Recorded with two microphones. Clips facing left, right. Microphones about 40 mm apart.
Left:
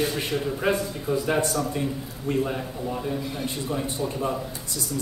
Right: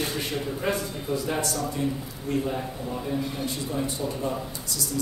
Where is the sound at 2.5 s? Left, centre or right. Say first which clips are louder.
Left 1 dB; centre.